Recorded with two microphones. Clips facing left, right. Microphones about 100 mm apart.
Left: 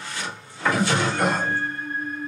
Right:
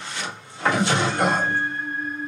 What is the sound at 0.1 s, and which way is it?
Music, 25° right (ahead or behind).